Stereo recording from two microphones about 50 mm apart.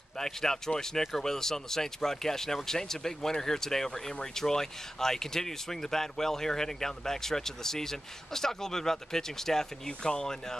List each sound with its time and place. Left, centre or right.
0.2 s speech: centre